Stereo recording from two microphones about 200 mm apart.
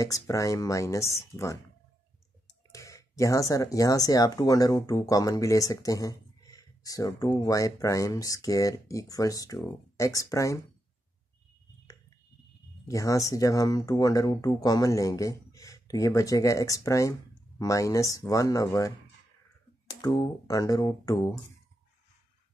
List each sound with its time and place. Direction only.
0.0 s speech: 15° left (ahead or behind)
2.7 s speech: 15° left (ahead or behind)
12.8 s speech: 15° left (ahead or behind)
20.0 s speech: 20° left (ahead or behind)